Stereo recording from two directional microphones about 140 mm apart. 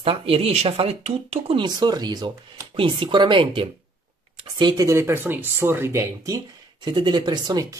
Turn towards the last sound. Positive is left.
turn(degrees=-30)  # may be behind; listen again after turning